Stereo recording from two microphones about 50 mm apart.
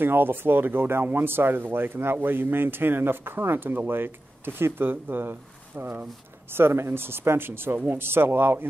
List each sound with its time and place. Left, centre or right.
0.0 s speech: right
6.5 s speech: right